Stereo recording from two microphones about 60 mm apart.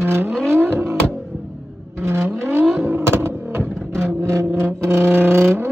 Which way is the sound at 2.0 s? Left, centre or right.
Right.